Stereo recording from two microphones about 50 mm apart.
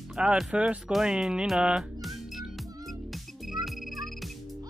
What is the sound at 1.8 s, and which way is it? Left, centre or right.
Music, centre.